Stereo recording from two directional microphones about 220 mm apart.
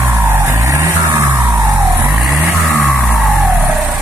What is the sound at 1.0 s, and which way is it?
Music, 10° right (ahead or behind).